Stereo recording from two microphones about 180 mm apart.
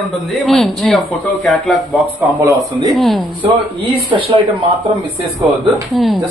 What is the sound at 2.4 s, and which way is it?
Speech, 15° right (ahead or behind).